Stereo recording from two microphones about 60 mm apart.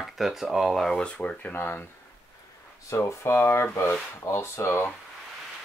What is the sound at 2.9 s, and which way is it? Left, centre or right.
Speech, left.